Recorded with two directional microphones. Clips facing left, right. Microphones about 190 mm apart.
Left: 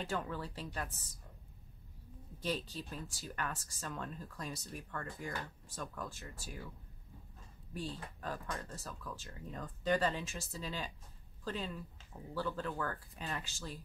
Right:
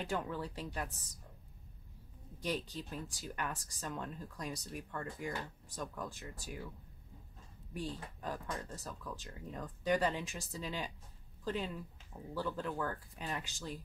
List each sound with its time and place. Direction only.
0.0 s speech: 15° right (ahead or behind)
2.4 s speech: 15° right (ahead or behind)
7.7 s speech: 15° right (ahead or behind)